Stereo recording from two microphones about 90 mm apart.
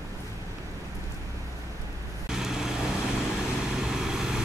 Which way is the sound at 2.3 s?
5° right (ahead or behind).